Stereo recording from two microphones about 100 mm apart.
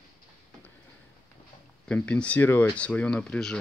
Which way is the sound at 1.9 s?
10° left (ahead or behind).